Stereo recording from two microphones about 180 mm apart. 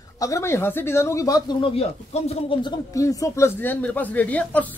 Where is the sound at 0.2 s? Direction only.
15° left (ahead or behind).